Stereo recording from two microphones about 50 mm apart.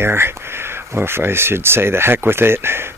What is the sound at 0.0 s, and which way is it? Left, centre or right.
Speech, right.